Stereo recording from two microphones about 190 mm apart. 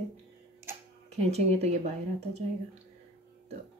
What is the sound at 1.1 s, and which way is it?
Speech, 35° right (ahead or behind).